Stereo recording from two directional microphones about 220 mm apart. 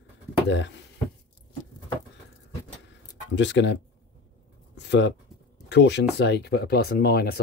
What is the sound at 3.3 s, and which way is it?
Speech, 55° left (ahead or behind).